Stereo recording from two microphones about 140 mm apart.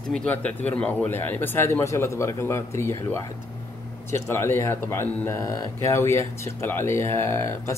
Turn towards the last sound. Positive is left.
turn(degrees=20)  # may be behind; listen again after turning